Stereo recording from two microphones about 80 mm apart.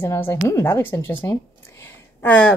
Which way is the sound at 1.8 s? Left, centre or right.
Left.